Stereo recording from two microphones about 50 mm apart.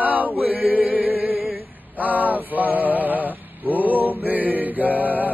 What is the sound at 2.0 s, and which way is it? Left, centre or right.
Male singing, right.